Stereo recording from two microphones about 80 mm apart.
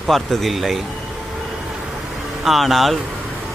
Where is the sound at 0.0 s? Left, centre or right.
Centre.